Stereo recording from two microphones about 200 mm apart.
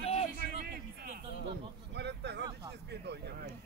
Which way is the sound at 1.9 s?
60° right (ahead or behind).